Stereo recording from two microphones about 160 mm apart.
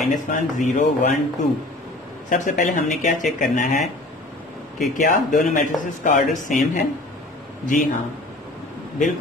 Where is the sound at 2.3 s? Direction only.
50° left (ahead or behind).